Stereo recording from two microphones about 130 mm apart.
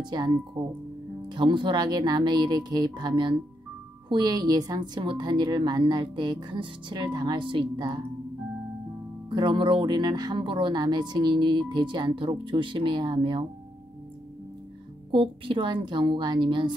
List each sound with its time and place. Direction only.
0.0 s speech: 35° right (ahead or behind)
9.3 s speech: 40° right (ahead or behind)
15.0 s speech: 40° right (ahead or behind)